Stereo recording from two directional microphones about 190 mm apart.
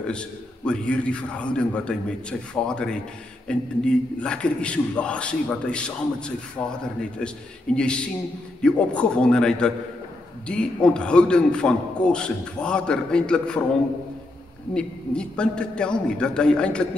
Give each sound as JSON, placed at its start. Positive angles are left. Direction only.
{"t": 0.7, "sound": "a man's voice", "side_deg": 5}
{"t": 14.7, "sound": "a man's voice", "side_deg": 5}